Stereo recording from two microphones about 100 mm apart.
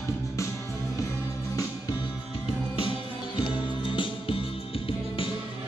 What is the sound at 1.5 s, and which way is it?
Music, 35° left (ahead or behind).